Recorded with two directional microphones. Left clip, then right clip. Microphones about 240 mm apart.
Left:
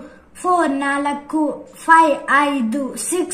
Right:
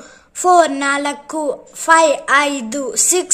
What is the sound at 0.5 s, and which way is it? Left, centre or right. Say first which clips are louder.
A woman's voice: right 4 dB; right.